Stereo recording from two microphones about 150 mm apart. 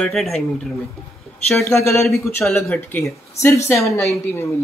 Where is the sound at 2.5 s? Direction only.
15° left (ahead or behind).